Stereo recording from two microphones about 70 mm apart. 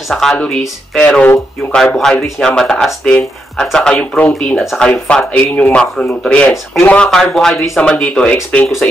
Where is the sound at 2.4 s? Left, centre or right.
Centre.